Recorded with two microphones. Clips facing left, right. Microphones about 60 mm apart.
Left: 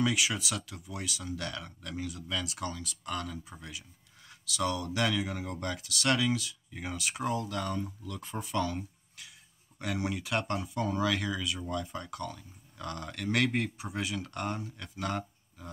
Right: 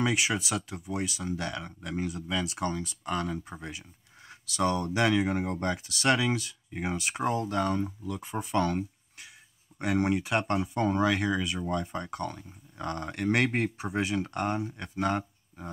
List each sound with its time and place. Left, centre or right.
0.0 s speech: right
8.0 s speech: right
8.6 s a sound: right
9.8 s speech: right